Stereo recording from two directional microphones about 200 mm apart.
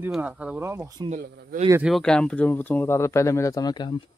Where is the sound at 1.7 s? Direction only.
5° right (ahead or behind); by 4.0 s 20° left (ahead or behind).